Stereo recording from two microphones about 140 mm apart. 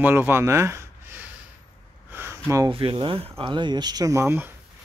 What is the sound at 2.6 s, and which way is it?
Speech, 40° right (ahead or behind).